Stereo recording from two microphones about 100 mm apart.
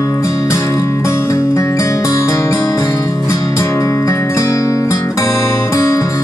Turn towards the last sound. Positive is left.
turn(degrees=30)  # may be behind; listen again after turning